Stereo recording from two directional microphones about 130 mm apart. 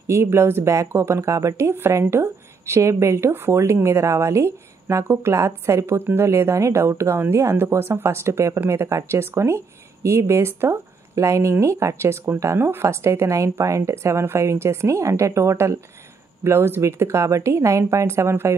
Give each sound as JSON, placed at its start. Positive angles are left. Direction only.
{"t": 0.0, "sound": "speech", "side_deg": -20}